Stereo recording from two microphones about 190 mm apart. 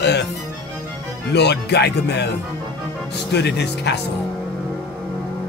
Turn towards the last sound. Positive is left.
turn(degrees=60)  # may be behind; listen again after turning